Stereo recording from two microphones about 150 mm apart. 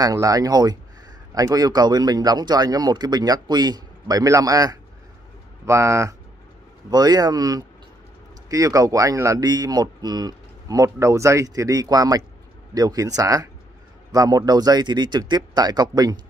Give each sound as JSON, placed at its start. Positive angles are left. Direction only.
{"t": 0.0, "sound": "speech", "side_deg": -25}